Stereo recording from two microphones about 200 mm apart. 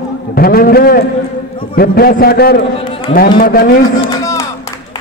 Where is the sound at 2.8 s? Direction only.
25° left (ahead or behind).